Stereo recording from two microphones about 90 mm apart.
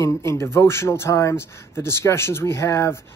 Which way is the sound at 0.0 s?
35° left (ahead or behind).